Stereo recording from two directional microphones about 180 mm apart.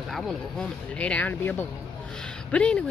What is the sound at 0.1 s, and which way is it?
Speech, centre (ahead or behind).